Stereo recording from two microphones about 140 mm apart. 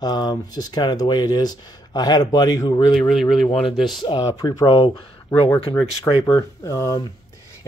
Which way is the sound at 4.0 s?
35° left (ahead or behind).